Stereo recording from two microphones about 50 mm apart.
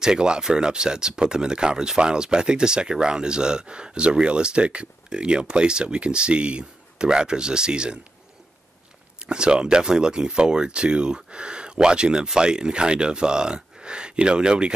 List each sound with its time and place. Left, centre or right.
0.0 s speech: centre
9.2 s speech: centre